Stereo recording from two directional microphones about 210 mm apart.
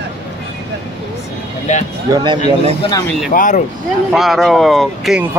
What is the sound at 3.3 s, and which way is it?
Speech, 40° left (ahead or behind).